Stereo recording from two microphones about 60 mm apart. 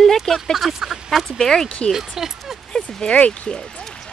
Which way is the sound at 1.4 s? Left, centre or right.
Centre.